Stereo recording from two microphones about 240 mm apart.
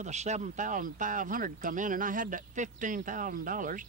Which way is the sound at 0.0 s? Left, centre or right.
Right.